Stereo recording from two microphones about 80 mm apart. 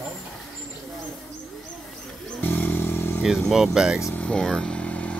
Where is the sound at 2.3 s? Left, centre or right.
Left.